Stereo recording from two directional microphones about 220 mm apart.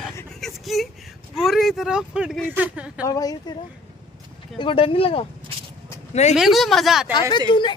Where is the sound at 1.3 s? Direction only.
Centre (ahead or behind).